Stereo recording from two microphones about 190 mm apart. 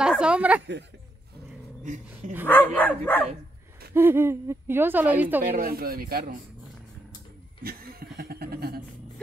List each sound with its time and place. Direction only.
0.0 s a woman's voice: 5° right (ahead or behind)
2.4 s dog: 10° left (ahead or behind)
3.9 s speech: 10° right (ahead or behind)
5.4 s speech: 45° right (ahead or behind)
7.6 s a sound: 55° right (ahead or behind)